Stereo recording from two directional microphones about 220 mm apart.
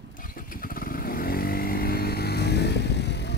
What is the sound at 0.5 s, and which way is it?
Motorcycle, 40° left (ahead or behind).